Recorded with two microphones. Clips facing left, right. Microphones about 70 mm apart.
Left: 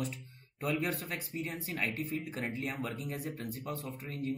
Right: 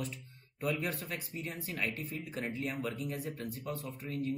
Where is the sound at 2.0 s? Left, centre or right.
Left.